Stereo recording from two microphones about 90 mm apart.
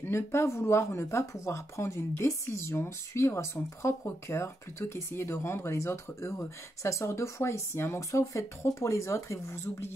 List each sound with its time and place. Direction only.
0.0 s speech: 30° left (ahead or behind)